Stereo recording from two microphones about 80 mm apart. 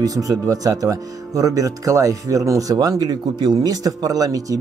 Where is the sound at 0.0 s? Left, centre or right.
Right.